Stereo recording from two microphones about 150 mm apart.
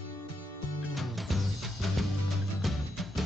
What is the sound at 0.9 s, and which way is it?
Music, centre (ahead or behind).